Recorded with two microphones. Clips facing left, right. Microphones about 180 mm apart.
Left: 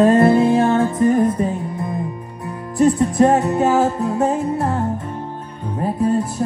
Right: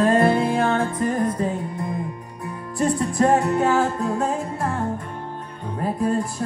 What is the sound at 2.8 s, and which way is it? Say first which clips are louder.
Music: left 6 dB; 20° left (ahead or behind).